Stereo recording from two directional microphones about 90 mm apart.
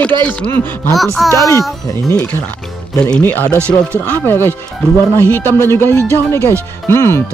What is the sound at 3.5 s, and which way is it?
Speech, 30° right (ahead or behind).